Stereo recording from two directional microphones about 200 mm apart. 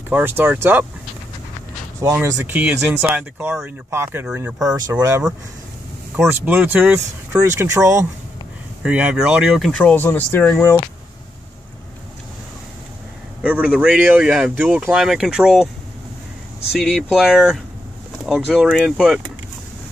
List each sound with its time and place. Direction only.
0.1 s speech: 10° right (ahead or behind)
2.1 s speech: 10° right (ahead or behind)
4.9 s speech: 15° right (ahead or behind); by 10.8 s 10° left (ahead or behind)
13.4 s speech: 5° right (ahead or behind)
16.8 s speech: centre (ahead or behind)